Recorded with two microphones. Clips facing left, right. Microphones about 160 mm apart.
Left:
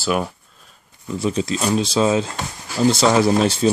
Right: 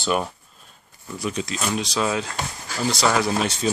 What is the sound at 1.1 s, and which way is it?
Speech, 30° left (ahead or behind).